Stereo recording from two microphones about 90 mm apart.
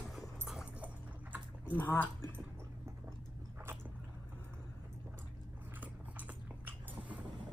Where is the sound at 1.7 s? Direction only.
20° left (ahead or behind).